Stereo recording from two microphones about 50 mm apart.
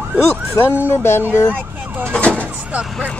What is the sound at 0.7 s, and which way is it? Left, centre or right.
Speech, left.